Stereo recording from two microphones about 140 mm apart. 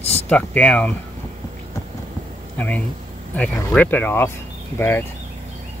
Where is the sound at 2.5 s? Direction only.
10° left (ahead or behind).